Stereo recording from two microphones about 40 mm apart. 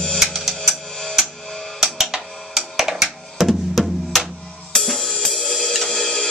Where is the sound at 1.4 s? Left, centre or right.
Centre.